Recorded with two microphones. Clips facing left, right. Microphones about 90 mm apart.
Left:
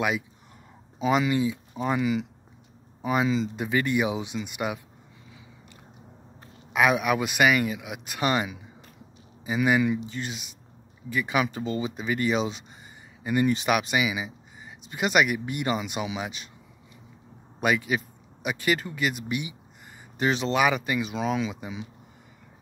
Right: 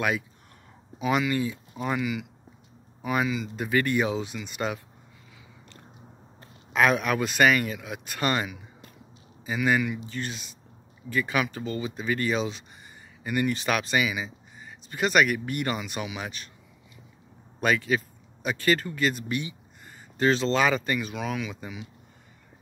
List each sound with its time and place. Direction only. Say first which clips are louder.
0.9 s speech: left 2 dB; 25° left (ahead or behind)
6.7 s speech: left 1 dB; 10° left (ahead or behind)
17.6 s speech: even; 15° left (ahead or behind)
21.1 s speech: left 4 dB; 25° left (ahead or behind)